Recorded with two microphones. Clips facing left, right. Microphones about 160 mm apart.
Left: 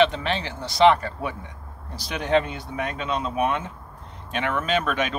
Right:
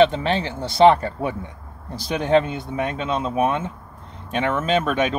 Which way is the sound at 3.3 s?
40° right (ahead or behind).